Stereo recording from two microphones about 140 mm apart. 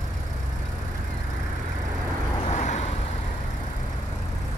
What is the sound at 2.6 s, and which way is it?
Vehicle, 60° left (ahead or behind).